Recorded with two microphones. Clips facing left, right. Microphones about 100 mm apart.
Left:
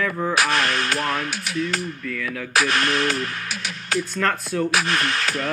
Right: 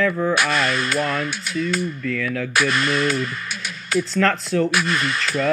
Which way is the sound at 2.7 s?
55° left (ahead or behind).